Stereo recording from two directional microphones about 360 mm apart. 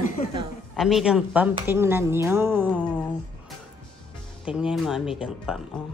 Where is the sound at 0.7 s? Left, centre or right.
Centre.